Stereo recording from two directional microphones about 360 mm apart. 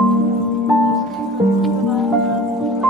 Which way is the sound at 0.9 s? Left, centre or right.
Centre.